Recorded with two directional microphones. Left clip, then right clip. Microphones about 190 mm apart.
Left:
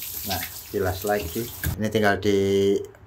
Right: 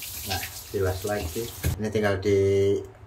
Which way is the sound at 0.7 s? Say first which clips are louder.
Left 1 dB; 75° left (ahead or behind).